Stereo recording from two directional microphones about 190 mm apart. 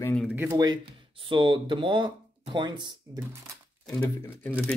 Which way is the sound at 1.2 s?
25° right (ahead or behind).